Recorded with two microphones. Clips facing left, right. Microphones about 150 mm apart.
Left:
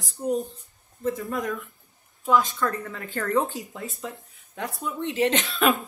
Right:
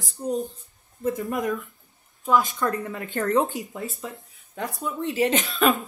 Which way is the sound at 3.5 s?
Centre (ahead or behind).